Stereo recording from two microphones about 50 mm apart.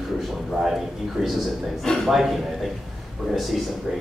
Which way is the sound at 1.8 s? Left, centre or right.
Centre.